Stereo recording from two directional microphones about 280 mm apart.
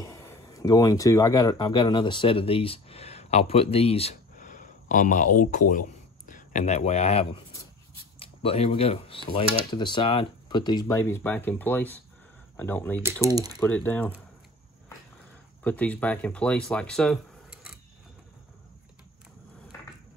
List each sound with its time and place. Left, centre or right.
0.0 s speech: centre
13.0 s speech: centre
13.6 s speech: centre
15.6 s speech: centre